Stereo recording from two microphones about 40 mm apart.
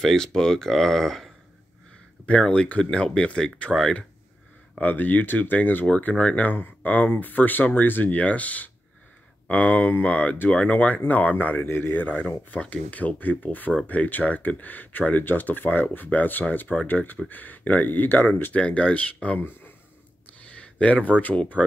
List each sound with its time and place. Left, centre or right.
0.0 s speech: centre
2.2 s speech: left
4.7 s speech: left
5.9 s speech: left
6.4 s speech: left
11.6 s speech: left
11.9 s speech: left
18.5 s speech: left
20.3 s a sound: left